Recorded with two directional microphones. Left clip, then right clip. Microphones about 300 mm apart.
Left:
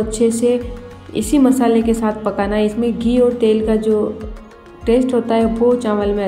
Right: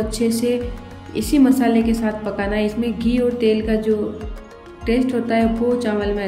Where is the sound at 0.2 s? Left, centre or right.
Centre.